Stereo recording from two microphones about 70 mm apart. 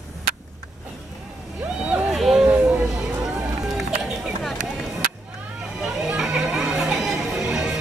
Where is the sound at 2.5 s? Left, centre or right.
Right.